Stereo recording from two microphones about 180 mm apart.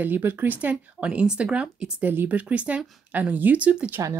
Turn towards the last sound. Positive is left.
turn(degrees=-5)  # may be behind; listen again after turning